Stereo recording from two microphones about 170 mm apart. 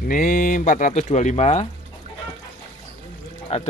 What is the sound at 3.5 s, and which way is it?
Speech, 40° left (ahead or behind).